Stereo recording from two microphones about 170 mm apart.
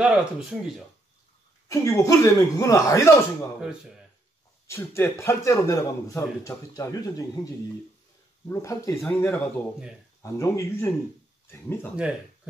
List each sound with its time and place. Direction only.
0.0 s speech: 5° right (ahead or behind)
1.7 s speech: 15° left (ahead or behind)
3.5 s speech: centre (ahead or behind)
4.6 s speech: 15° left (ahead or behind)